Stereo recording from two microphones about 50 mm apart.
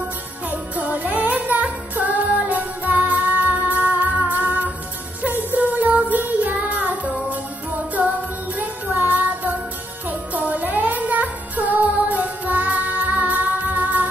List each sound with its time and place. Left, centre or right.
0.5 s music: right